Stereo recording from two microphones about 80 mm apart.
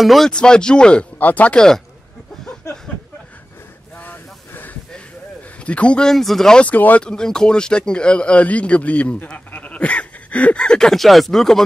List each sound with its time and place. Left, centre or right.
0.0 s speech: centre
0.3 s speech: centre
4.0 s a sound: left
5.6 s speech: centre
6.7 s speech: centre